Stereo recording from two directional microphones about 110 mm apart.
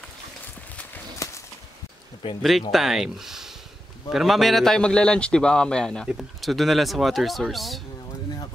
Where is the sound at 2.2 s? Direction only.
50° left (ahead or behind).